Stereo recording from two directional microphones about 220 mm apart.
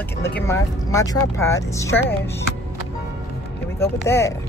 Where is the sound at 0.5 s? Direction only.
15° left (ahead or behind).